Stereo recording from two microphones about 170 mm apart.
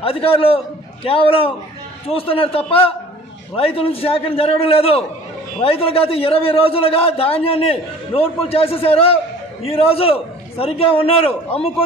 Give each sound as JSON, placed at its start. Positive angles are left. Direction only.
{"t": 0.0, "sound": "a man's voice", "side_deg": 35}